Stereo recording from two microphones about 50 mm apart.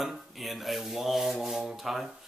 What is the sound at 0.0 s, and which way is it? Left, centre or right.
Rub, centre.